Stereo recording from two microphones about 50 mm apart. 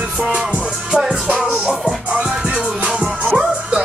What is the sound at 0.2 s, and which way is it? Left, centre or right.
Music, centre.